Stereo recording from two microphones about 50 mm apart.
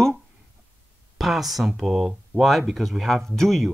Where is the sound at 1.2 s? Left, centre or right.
Centre.